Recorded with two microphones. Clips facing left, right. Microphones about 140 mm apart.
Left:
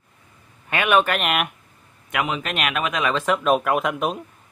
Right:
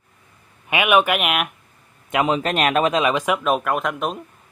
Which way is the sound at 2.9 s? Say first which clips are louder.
Right 2 dB; 15° right (ahead or behind).